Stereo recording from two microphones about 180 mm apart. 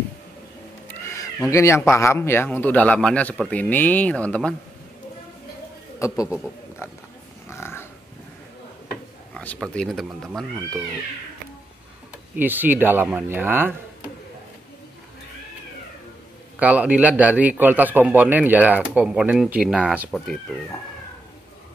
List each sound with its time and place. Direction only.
0.8 s a sound: 15° left (ahead or behind)
1.5 s a man's voice: 15° left (ahead or behind)
5.9 s speech: 15° left (ahead or behind)
6.2 s speech: 5° right (ahead or behind)
7.4 s pig: 15° left (ahead or behind)
9.3 s speech: 5° left (ahead or behind)
12.4 s speech: 10° right (ahead or behind)
16.5 s speech: 10° right (ahead or behind)